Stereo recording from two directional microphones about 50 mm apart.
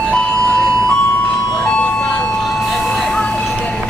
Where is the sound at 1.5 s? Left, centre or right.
Centre.